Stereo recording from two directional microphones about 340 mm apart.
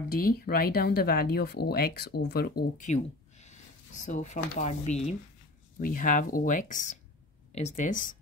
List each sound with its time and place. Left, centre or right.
0.1 s speech: left